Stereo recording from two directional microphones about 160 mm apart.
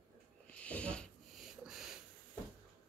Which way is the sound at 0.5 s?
10° left (ahead or behind).